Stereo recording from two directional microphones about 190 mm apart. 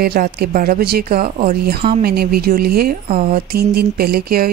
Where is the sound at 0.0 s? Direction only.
55° right (ahead or behind).